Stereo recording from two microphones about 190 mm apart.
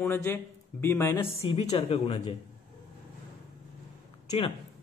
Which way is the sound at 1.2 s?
30° left (ahead or behind).